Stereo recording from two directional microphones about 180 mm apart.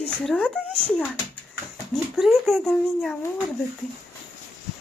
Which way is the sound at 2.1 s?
Centre (ahead or behind).